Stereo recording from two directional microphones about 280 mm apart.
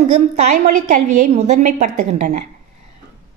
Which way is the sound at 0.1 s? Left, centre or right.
Right.